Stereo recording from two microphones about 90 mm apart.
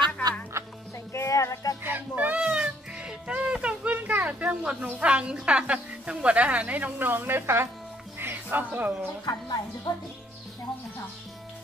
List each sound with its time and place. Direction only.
0.5 s music: 35° right (ahead or behind)
1.1 s a sound: 35° left (ahead or behind)
1.8 s music: 20° right (ahead or behind)
9.2 s speech: 50° left (ahead or behind)